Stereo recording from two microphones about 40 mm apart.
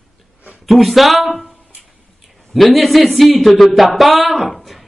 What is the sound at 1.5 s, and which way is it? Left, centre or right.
Music, centre.